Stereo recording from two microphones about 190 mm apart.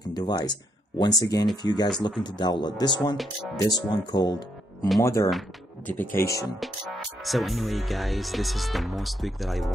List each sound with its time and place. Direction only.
0.1 s speech: 20° left (ahead or behind)
6.6 s speech: centre (ahead or behind)